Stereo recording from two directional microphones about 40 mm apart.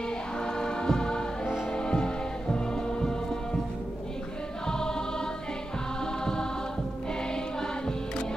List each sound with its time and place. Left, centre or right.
0.6 s music: centre
4.6 s choir: centre